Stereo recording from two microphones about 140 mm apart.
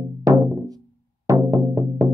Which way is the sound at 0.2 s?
25° right (ahead or behind).